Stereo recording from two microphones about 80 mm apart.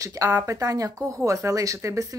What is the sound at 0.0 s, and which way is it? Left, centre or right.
Speech, right.